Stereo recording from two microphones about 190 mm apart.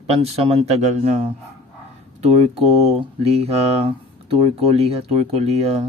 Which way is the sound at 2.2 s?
30° right (ahead or behind).